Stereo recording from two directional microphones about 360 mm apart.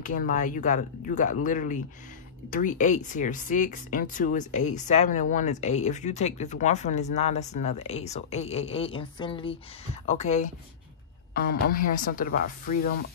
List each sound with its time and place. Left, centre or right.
0.0 s speech: left
11.7 s speech: left